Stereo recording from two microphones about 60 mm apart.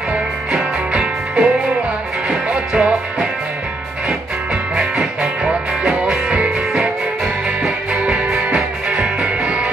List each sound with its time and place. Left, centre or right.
0.6 s music: centre
2.5 s music: centre
4.9 s music: centre
7.9 s music: centre